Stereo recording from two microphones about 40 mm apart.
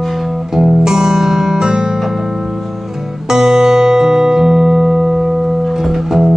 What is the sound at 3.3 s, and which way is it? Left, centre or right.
Music, centre.